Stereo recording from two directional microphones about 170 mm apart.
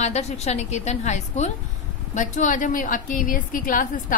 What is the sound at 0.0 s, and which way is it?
A woman's voice, 40° left (ahead or behind).